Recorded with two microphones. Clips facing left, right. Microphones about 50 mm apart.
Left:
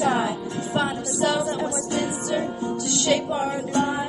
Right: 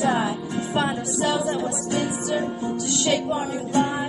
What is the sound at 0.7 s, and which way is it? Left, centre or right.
Music, centre.